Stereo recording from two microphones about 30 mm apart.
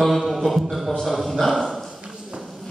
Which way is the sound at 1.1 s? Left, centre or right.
Centre.